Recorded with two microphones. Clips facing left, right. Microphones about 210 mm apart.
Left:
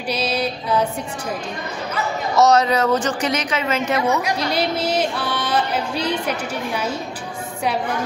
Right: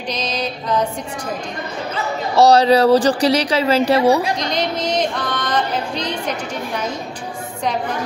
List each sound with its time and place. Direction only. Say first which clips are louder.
0.1 s female singing: left 2 dB; 10° left (ahead or behind)
2.3 s a woman's voice: right 4 dB; 30° right (ahead or behind)
4.4 s music: even; 5° left (ahead or behind)